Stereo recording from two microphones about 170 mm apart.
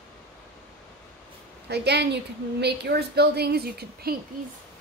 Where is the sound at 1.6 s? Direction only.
75° right (ahead or behind).